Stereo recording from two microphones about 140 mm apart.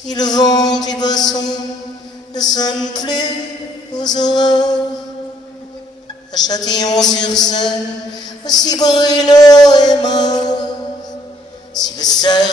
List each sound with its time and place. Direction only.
0.1 s a man's voice: 30° left (ahead or behind)
2.5 s a man's voice: 30° left (ahead or behind)
6.3 s a man's voice: 30° left (ahead or behind)
11.8 s a man's voice: 30° left (ahead or behind)